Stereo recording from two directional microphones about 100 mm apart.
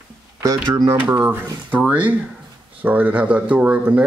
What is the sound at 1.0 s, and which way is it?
Speech, 20° right (ahead or behind).